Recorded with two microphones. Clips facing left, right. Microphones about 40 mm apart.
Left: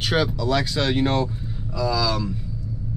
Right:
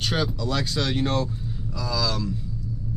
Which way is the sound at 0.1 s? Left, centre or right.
Centre.